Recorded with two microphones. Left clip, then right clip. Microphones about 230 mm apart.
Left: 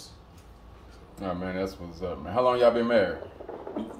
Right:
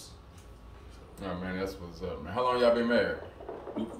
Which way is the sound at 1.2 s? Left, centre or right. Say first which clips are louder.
Left 4 dB; left.